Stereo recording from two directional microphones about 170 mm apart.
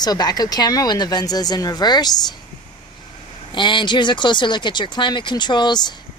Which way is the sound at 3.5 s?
30° left (ahead or behind).